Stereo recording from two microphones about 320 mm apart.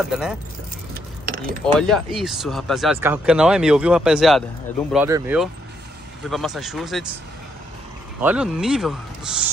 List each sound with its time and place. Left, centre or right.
0.1 s speech: centre
1.2 s keys jangling: right
1.6 s speech: centre
8.2 s speech: centre